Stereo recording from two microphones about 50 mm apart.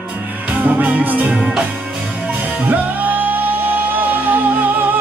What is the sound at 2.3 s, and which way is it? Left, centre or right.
Music, right.